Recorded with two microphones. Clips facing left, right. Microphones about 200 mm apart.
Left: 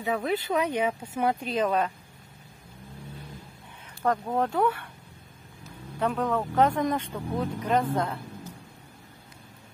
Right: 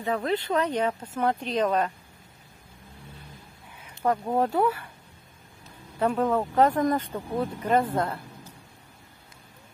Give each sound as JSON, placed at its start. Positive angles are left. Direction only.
{"t": 0.0, "sound": "speech", "side_deg": 5}
{"t": 4.0, "sound": "speech", "side_deg": -10}
{"t": 5.9, "sound": "speech", "side_deg": 0}